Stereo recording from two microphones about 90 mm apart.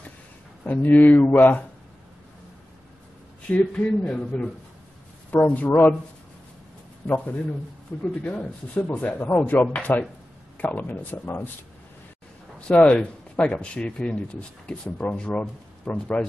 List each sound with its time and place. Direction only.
0.7 s speech: 20° left (ahead or behind)
3.5 s speech: 10° left (ahead or behind)
8.0 s speech: 15° left (ahead or behind)
12.5 s speech: 10° left (ahead or behind)